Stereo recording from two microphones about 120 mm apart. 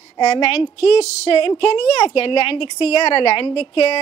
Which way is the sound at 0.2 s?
60° left (ahead or behind).